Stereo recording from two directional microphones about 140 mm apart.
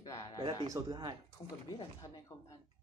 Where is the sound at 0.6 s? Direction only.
25° right (ahead or behind).